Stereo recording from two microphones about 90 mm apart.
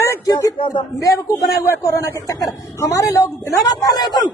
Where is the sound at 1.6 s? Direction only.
35° left (ahead or behind).